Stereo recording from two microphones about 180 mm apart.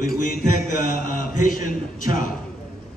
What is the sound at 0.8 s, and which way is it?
A man's voice, 45° left (ahead or behind).